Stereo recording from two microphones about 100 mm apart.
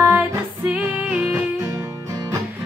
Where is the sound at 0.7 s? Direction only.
15° right (ahead or behind).